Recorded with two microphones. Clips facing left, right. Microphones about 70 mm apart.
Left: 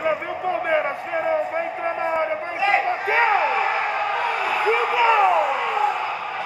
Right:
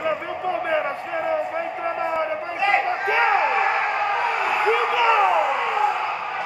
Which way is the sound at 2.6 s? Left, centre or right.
Centre.